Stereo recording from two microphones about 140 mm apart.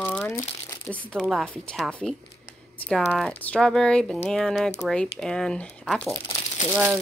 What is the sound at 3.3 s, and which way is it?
Speech, 10° left (ahead or behind).